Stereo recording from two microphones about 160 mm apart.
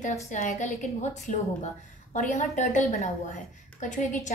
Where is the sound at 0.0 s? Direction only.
45° left (ahead or behind).